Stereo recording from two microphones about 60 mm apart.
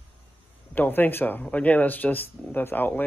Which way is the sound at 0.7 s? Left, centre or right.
Left.